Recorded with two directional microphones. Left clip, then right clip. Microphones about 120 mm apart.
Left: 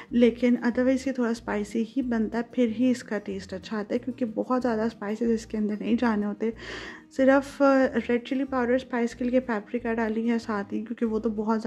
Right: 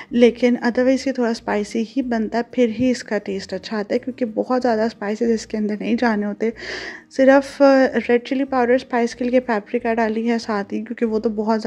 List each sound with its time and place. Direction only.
0.1 s a woman's voice: 30° right (ahead or behind)